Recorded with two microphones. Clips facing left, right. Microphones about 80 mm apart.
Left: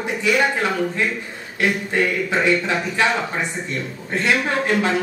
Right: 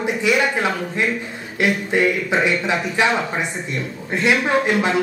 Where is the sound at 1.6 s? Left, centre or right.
Centre.